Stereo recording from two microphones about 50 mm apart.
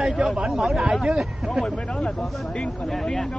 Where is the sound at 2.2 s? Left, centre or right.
Centre.